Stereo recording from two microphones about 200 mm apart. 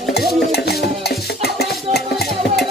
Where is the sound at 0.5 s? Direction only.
50° left (ahead or behind).